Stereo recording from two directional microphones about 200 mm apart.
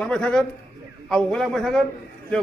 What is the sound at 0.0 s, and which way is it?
A man's voice, centre (ahead or behind).